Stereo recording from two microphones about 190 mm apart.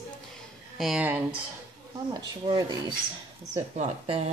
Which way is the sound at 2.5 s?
20° right (ahead or behind).